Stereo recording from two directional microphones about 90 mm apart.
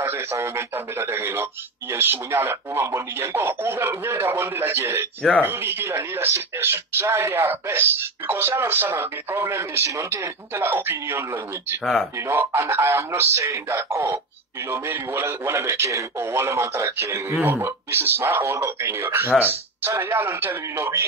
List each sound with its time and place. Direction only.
0.0 s speech: 30° right (ahead or behind)
11.8 s speech: centre (ahead or behind)
12.2 s speech: 25° right (ahead or behind)